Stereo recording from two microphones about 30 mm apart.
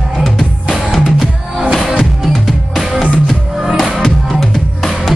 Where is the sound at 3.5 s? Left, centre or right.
Centre.